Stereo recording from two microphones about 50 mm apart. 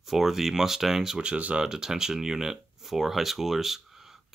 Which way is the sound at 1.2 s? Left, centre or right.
Right.